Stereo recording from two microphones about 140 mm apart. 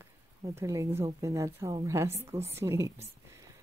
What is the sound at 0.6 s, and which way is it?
Speech, 20° right (ahead or behind).